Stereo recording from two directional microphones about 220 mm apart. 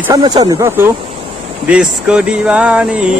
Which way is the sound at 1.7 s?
5° right (ahead or behind).